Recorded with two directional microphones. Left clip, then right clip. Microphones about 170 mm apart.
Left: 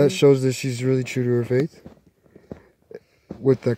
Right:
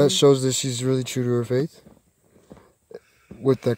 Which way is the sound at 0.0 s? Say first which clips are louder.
Even; 5° right (ahead or behind).